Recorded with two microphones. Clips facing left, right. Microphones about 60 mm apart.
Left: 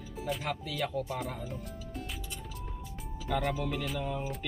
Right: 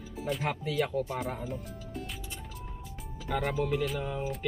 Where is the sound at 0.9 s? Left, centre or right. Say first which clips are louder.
Right 3 dB; centre.